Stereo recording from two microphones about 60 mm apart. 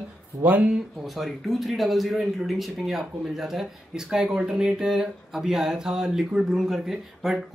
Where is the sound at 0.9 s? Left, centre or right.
Centre.